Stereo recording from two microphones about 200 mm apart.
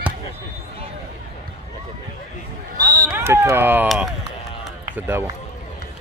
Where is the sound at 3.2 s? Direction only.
15° right (ahead or behind).